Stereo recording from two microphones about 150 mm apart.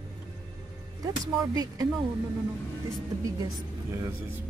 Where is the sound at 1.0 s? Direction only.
25° right (ahead or behind).